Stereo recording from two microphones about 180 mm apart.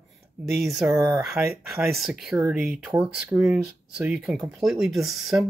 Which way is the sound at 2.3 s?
10° right (ahead or behind).